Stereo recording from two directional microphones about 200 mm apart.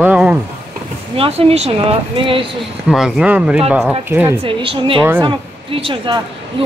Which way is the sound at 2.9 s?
5° right (ahead or behind).